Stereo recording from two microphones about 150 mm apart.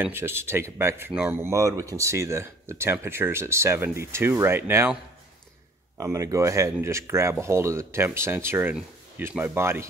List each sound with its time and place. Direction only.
0.0 s speech: 15° right (ahead or behind)
5.9 s speech: 20° right (ahead or behind)